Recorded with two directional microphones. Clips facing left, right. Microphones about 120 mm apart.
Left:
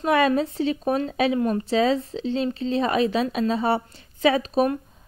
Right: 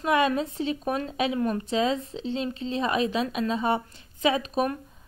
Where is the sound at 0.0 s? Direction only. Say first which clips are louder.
Left 3 dB; 30° left (ahead or behind).